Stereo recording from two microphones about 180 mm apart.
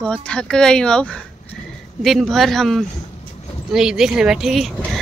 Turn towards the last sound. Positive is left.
turn(degrees=0)  # may be behind; listen again after turning